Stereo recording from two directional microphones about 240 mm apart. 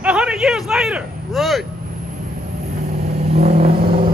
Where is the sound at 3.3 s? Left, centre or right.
Right.